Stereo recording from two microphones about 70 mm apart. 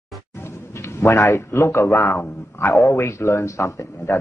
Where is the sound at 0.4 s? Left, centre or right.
Left.